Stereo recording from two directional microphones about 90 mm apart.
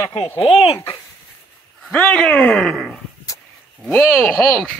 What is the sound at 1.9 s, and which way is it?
Speech, 20° left (ahead or behind).